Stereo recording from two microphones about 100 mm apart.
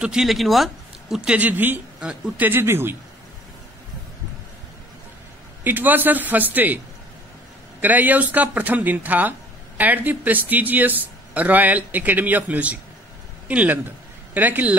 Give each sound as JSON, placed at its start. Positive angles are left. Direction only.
{"t": 0.0, "sound": "a man's voice", "side_deg": -5}
{"t": 5.6, "sound": "speech", "side_deg": -20}
{"t": 7.8, "sound": "a man's voice", "side_deg": -15}